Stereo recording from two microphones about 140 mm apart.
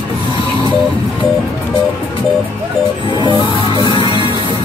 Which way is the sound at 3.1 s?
35° left (ahead or behind).